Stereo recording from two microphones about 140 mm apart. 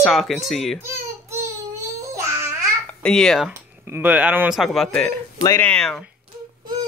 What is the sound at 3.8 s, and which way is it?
Speech, 15° right (ahead or behind).